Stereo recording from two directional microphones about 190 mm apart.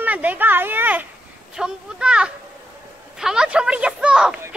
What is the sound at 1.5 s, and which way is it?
A woman's voice, 5° right (ahead or behind).